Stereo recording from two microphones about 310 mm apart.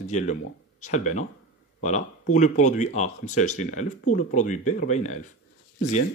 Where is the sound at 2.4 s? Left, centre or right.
Left.